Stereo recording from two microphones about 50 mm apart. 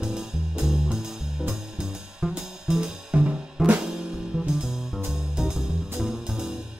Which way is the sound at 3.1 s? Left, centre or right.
Right.